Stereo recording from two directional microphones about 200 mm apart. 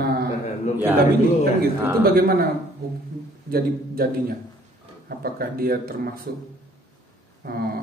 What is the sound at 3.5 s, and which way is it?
A man's voice, 50° right (ahead or behind).